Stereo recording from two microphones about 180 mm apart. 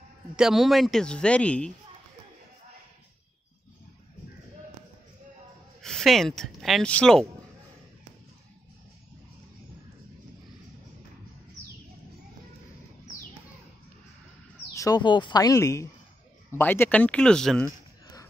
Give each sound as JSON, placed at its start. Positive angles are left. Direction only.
{"t": 0.4, "sound": "speech", "side_deg": 0}
{"t": 5.8, "sound": "speech", "side_deg": 5}
{"t": 14.8, "sound": "speech", "side_deg": 20}
{"t": 18.0, "sound": "a sound", "side_deg": 20}